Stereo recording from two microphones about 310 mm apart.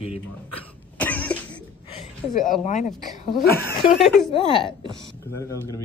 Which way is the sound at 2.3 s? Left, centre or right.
Left.